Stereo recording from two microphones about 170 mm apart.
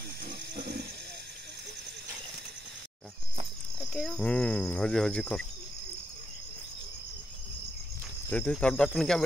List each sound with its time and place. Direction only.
0.3 s snake: 70° right (ahead or behind)
3.9 s speech: centre (ahead or behind)
8.3 s speech: 5° left (ahead or behind)